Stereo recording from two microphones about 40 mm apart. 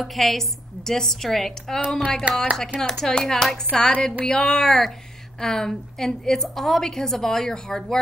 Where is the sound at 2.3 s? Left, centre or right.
Right.